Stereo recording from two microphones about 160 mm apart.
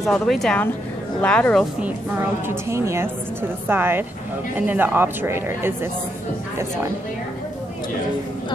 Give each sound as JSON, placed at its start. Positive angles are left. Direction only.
{"t": 0.0, "sound": "speech", "side_deg": 0}
{"t": 2.4, "sound": "a woman's voice", "side_deg": -15}